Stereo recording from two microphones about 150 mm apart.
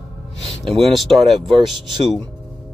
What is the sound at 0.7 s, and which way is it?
Speech, centre (ahead or behind).